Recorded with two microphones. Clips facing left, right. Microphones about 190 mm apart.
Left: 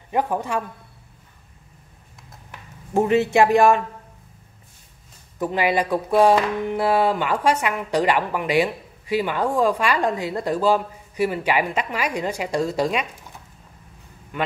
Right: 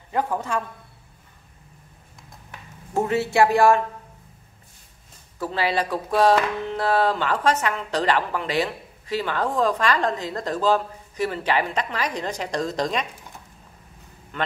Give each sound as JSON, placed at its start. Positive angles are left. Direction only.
{"t": 0.1, "sound": "speech", "side_deg": 15}
{"t": 2.9, "sound": "speech", "side_deg": 20}
{"t": 5.4, "sound": "speech", "side_deg": 15}
{"t": 14.3, "sound": "speech", "side_deg": 10}